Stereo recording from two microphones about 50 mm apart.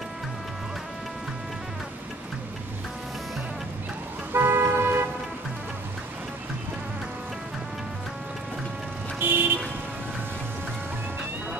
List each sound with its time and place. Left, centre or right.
4.3 s car: right
9.2 s vehicle: right